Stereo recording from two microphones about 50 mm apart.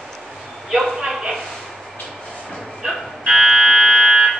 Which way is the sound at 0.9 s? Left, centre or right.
Centre.